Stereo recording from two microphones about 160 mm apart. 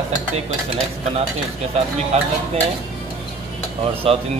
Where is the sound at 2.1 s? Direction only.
40° right (ahead or behind).